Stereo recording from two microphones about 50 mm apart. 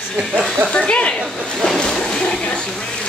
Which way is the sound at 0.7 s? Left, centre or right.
Left.